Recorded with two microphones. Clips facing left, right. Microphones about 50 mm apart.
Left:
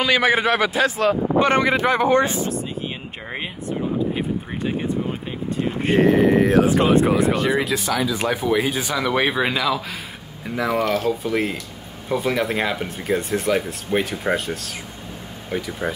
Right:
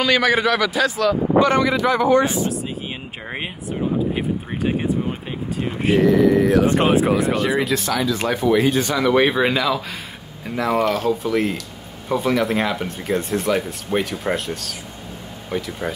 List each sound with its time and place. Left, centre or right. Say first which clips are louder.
0.2 s a man's voice: even; left
5.9 s a man's voice: even; left
6.9 s speech: even; centre